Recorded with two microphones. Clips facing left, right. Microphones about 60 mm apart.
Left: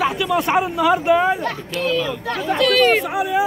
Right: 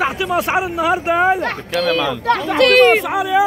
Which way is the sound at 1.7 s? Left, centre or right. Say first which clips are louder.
Right 4 dB; right.